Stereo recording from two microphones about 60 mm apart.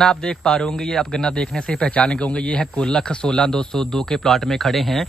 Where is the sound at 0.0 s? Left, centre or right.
Centre.